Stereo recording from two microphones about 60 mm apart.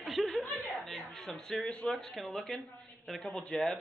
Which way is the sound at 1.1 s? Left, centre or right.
Centre.